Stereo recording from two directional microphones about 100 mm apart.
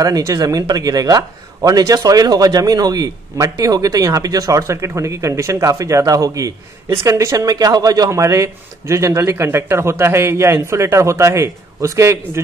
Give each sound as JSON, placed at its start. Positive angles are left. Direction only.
{"t": 0.0, "sound": "a man's voice", "side_deg": -35}